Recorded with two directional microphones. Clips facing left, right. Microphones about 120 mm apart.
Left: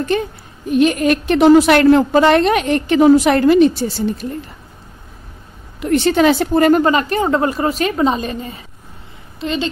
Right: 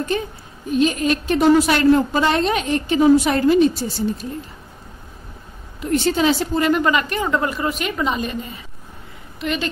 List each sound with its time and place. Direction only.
0.1 s a woman's voice: 70° left (ahead or behind)
5.8 s a woman's voice: 70° left (ahead or behind)
6.7 s a woman's voice: 35° left (ahead or behind)